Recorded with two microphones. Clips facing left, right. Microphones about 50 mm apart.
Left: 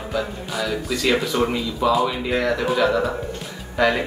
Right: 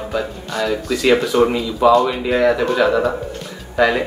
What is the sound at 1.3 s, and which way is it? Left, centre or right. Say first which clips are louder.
Speech: right 6 dB; centre.